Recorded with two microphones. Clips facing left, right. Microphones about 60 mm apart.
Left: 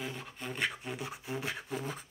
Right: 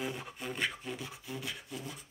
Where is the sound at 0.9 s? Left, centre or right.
Left.